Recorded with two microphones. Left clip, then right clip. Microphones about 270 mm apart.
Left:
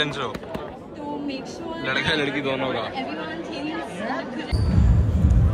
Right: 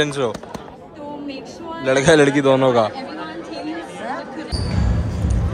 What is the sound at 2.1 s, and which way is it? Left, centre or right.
Speech, right.